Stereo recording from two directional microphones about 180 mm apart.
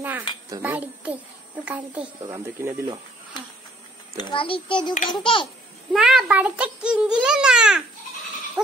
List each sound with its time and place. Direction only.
0.5 s speech: 10° right (ahead or behind)
4.2 s a child's voice: 30° left (ahead or behind)
5.9 s a child's voice: 5° right (ahead or behind)
8.6 s a sound: 5° right (ahead or behind)